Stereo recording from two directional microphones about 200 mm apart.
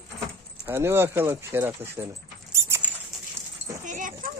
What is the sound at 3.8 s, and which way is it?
Dog, 40° right (ahead or behind).